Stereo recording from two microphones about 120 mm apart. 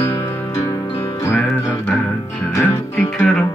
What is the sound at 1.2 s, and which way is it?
Music, 20° left (ahead or behind).